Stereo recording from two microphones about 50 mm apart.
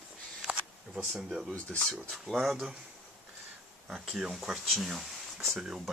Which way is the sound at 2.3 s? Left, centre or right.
Centre.